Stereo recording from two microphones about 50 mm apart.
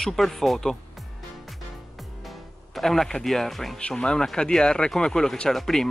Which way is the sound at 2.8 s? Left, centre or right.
Centre.